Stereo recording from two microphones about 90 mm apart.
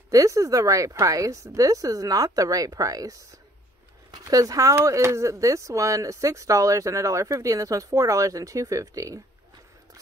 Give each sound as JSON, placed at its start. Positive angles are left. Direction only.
{"t": 0.1, "sound": "speech", "side_deg": -35}